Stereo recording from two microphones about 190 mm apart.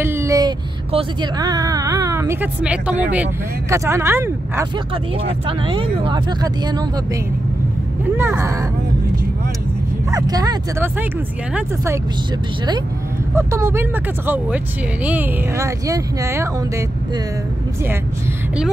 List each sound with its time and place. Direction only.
0.0 s speech: 15° right (ahead or behind)
5.2 s speech: 30° right (ahead or behind)
8.0 s speech: 10° right (ahead or behind)
10.1 s speech: 20° right (ahead or behind)
13.4 s speech: 15° right (ahead or behind)